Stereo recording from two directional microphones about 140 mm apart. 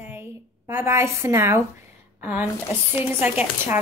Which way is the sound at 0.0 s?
15° right (ahead or behind).